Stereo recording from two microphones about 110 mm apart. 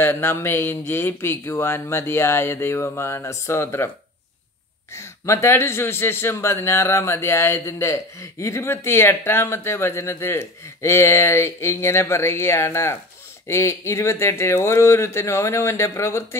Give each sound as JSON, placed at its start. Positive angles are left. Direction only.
{"t": 0.0, "sound": "speech", "side_deg": 20}
{"t": 4.9, "sound": "speech", "side_deg": 25}